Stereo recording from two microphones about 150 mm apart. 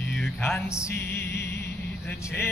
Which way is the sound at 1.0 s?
90° left.